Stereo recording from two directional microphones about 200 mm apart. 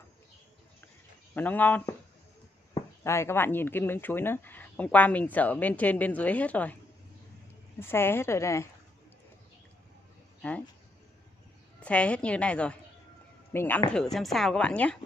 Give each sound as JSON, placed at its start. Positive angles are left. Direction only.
{"t": 1.3, "sound": "speech", "side_deg": 10}
{"t": 7.8, "sound": "speech", "side_deg": 10}
{"t": 10.4, "sound": "speech", "side_deg": 5}
{"t": 11.8, "sound": "a woman's voice", "side_deg": 5}